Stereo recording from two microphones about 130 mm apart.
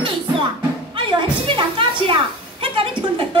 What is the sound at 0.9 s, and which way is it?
A woman's voice, 40° right (ahead or behind).